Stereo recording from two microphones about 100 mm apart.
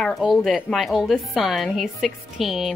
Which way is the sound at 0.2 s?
Centre (ahead or behind).